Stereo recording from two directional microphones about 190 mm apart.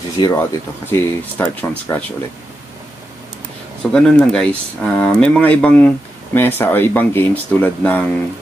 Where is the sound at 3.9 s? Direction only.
5° left (ahead or behind).